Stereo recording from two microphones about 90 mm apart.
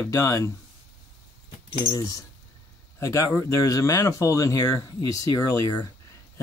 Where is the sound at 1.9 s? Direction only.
40° left (ahead or behind).